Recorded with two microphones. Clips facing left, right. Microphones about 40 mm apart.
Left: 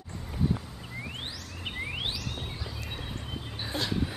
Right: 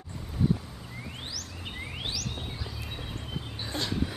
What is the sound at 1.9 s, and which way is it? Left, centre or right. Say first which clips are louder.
Chirp: even; left.